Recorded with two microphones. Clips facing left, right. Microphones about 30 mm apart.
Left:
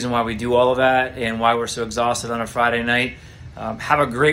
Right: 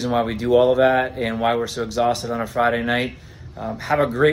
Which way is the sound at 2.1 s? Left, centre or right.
Left.